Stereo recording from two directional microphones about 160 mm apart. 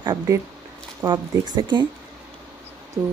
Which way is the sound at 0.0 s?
25° right (ahead or behind).